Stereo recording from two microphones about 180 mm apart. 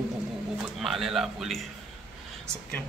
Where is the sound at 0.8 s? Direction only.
Centre (ahead or behind).